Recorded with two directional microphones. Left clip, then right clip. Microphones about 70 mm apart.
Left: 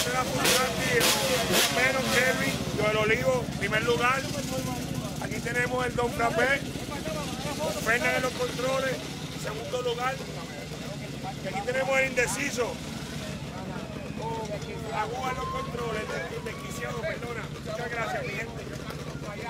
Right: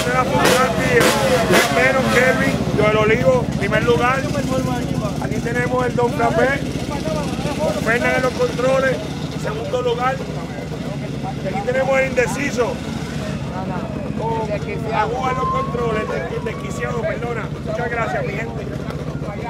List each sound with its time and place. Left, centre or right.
0.0 s vehicle: centre
5.5 s speech: left
7.6 s speech: left
11.6 s speech: left
14.9 s speech: centre
17.7 s speech: centre